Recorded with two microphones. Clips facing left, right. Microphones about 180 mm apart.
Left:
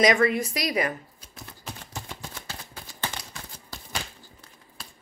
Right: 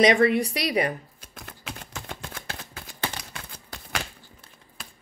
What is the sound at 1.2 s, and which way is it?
Typewriter, 65° right (ahead or behind).